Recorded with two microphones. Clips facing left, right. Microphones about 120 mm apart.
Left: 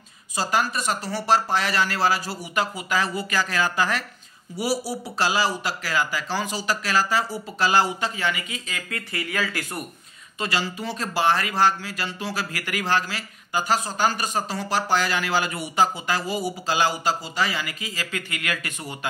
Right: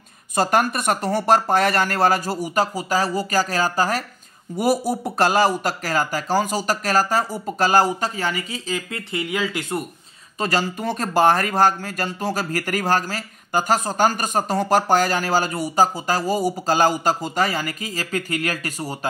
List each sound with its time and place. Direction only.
0.4 s speech: 55° right (ahead or behind)
4.6 s speech: 50° right (ahead or behind); by 9.8 s 25° right (ahead or behind)
10.4 s speech: 45° right (ahead or behind)